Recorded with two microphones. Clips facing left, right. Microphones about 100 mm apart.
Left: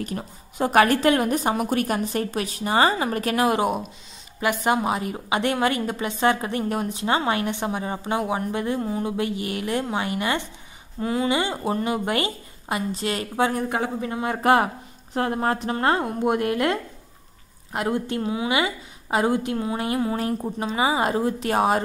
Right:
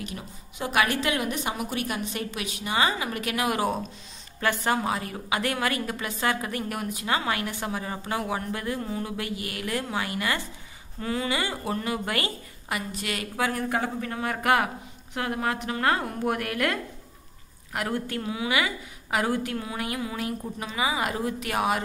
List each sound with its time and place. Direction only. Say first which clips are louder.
0.0 s a woman's voice: left 6 dB; 40° left (ahead or behind)
3.6 s a woman's voice: left 3 dB; 10° left (ahead or behind); by 21.8 s 35° left (ahead or behind)